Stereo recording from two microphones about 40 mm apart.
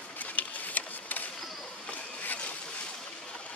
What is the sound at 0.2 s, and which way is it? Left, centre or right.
Printer, left.